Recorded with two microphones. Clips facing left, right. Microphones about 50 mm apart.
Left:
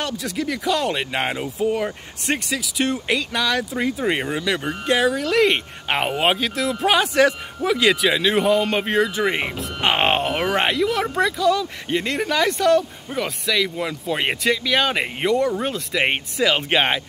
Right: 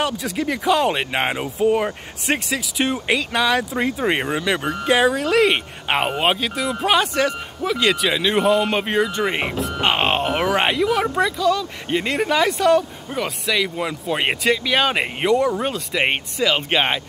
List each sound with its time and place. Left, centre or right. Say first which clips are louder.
0.0 s speech: right 3 dB; centre
9.8 s speech: left 1 dB; centre
10.4 s speech: right 1 dB; centre
11.1 s speech: even; centre
12.0 s speech: right 2 dB; centre